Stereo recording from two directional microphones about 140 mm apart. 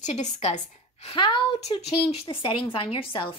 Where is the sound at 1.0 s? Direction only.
35° left (ahead or behind).